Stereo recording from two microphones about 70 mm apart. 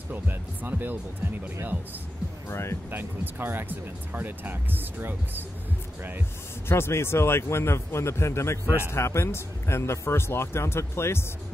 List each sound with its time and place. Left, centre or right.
0.1 s speech: right
2.4 s speech: left
2.9 s speech: right
6.7 s a man's voice: left